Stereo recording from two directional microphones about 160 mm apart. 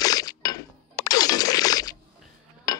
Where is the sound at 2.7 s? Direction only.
20° left (ahead or behind).